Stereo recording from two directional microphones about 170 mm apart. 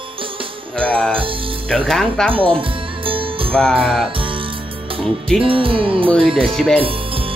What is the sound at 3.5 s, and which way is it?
Music, 5° left (ahead or behind).